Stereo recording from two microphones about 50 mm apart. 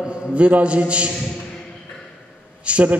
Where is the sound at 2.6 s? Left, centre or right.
Right.